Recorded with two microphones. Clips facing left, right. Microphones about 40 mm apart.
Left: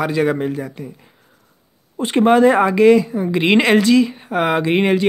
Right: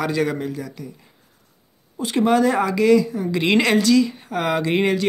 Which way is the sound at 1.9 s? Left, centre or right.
Left.